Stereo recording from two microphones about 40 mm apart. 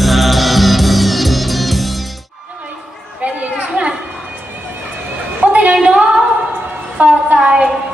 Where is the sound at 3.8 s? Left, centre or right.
Right.